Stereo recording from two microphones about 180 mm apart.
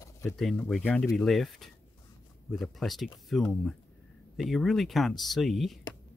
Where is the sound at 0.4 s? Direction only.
5° left (ahead or behind).